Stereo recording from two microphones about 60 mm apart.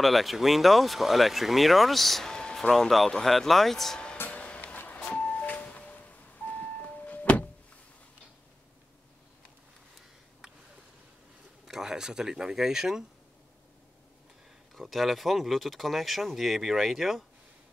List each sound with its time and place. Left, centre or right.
0.0 s speech: centre
4.3 s music: centre
11.6 s speech: centre
14.8 s speech: centre